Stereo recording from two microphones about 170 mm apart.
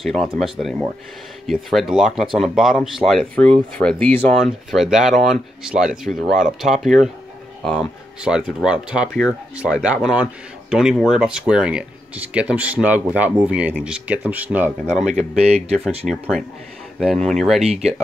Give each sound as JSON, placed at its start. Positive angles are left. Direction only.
{"t": 0.0, "sound": "speech", "side_deg": 0}
{"t": 8.2, "sound": "speech", "side_deg": -5}
{"t": 15.0, "sound": "speech", "side_deg": -40}
{"t": 16.1, "sound": "speech", "side_deg": 0}